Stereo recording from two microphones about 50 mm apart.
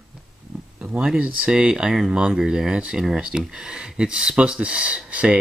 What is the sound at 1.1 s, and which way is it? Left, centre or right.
Speech, right.